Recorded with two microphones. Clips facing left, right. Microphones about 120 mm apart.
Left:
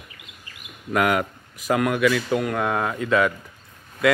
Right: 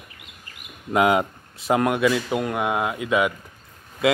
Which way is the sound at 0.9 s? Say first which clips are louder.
Right 2 dB; 20° right (ahead or behind).